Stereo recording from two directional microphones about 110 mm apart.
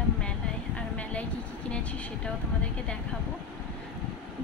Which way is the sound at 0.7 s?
10° left (ahead or behind).